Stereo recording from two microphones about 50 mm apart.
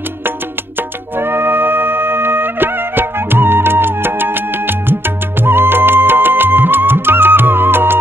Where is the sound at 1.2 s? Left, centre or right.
Right.